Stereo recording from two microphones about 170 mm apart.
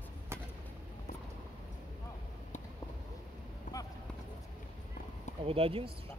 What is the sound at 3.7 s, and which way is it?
Run, 50° left (ahead or behind).